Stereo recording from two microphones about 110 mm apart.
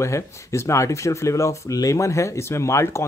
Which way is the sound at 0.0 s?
25° left (ahead or behind).